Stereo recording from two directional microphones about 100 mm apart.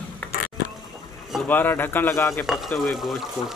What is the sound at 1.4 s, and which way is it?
Speech, 20° left (ahead or behind).